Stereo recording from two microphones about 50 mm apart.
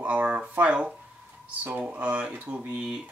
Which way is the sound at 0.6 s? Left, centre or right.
Right.